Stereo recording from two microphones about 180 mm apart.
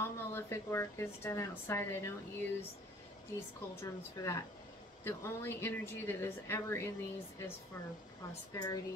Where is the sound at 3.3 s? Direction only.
15° left (ahead or behind).